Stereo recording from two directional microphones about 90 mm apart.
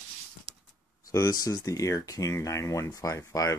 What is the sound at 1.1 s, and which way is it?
Speech, 45° left (ahead or behind).